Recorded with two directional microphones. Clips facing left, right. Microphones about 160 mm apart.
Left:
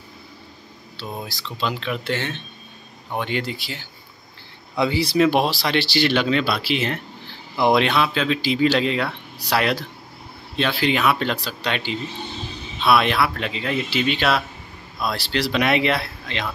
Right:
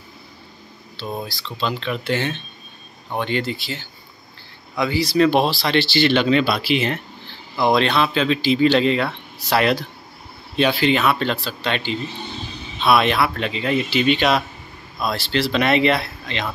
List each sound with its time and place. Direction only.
0.9 s speech: 10° left (ahead or behind)
2.0 s speech: 5° right (ahead or behind)
3.2 s speech: 10° left (ahead or behind)
4.7 s speech: 25° left (ahead or behind)
5.1 s speech: 10° left (ahead or behind)
7.6 s speech: 10° left (ahead or behind)
10.8 s speech: 5° left (ahead or behind)